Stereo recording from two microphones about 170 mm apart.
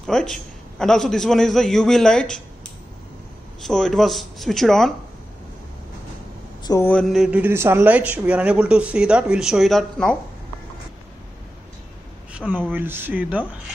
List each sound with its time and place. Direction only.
0.0 s a man's voice: 5° left (ahead or behind)
6.6 s speech: 20° left (ahead or behind)
6.9 s speech: centre (ahead or behind)
12.3 s speech: 5° right (ahead or behind)